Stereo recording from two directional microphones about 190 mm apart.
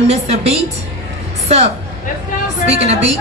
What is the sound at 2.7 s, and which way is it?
Speech, 35° right (ahead or behind).